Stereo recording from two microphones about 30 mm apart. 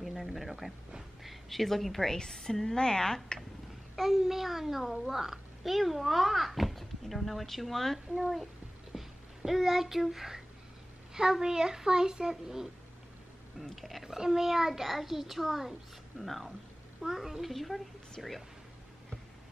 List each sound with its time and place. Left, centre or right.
0.2 s a woman's voice: centre
2.1 s a woman's voice: centre
3.9 s a child's voice: centre
8.9 s a sound: centre
10.0 s a child's voice: centre
11.4 s a child's voice: right
13.7 s a child's voice: centre
14.0 s a child's voice: centre
17.0 s a child's voice: centre
17.6 s a child's voice: centre